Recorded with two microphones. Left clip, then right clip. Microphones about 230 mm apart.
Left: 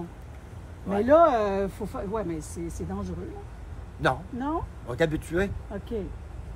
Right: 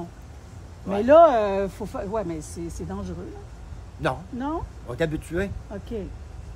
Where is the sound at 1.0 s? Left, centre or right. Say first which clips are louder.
Right 5 dB; right.